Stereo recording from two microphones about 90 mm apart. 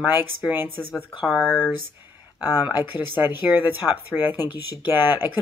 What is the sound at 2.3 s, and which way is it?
Speech, 20° right (ahead or behind).